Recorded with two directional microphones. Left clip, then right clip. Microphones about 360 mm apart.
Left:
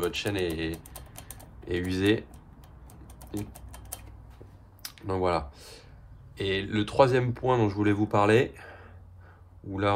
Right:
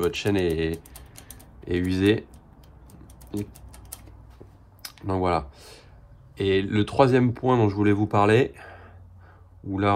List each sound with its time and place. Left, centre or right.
0.0 s speech: centre
1.2 s typing: centre
4.8 s speech: centre
8.5 s a sound: centre